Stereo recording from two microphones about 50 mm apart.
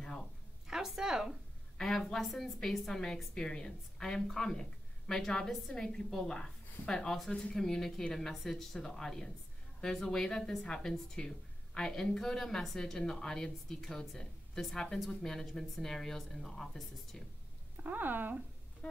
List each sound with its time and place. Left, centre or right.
0.7 s a woman's voice: centre
1.8 s a woman's voice: centre
2.9 s a woman's voice: centre
17.8 s speech: right